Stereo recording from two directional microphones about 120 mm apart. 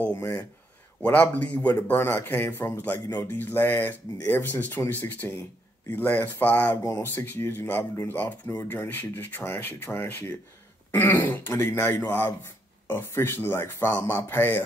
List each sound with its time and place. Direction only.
0.0 s speech: 15° left (ahead or behind)